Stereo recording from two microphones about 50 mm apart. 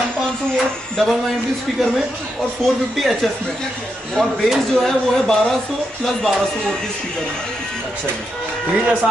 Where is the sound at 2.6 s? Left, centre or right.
Centre.